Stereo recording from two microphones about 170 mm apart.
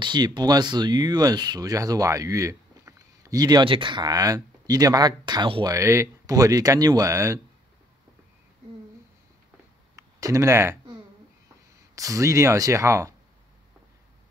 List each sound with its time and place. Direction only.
0.0 s speech: 25° right (ahead or behind)
9.9 s a sound: 20° right (ahead or behind)
11.9 s speech: 20° right (ahead or behind)